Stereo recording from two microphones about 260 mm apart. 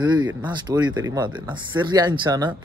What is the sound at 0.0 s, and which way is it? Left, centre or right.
Speech, centre.